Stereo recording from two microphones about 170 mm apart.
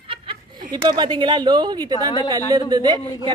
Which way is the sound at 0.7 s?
25° right (ahead or behind).